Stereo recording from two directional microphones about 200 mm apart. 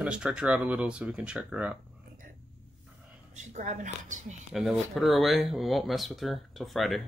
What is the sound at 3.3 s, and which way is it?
A woman's voice, 35° right (ahead or behind).